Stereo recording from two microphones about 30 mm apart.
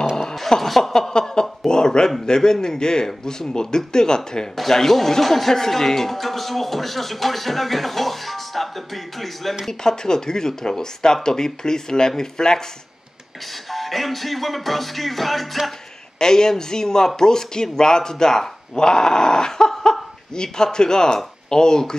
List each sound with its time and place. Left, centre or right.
0.1 s a sound: centre
0.9 s chuckle: left
2.2 s speech: left
4.7 s speech: centre
9.7 s speech: left
13.7 s speech: centre
16.2 s speech: left